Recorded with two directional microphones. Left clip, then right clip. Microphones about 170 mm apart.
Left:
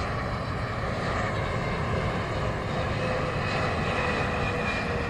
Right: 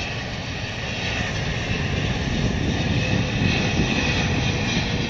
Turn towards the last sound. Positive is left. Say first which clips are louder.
# right 3 dB
turn(degrees=-20)  # may be behind; listen again after turning